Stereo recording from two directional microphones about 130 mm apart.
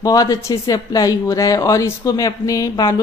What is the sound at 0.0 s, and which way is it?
Speech, 30° left (ahead or behind).